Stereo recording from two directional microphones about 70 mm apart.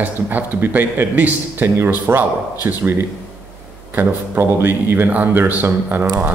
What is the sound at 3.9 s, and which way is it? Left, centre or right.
A man's voice, right.